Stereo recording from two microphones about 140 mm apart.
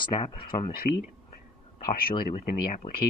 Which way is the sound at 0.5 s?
55° left (ahead or behind).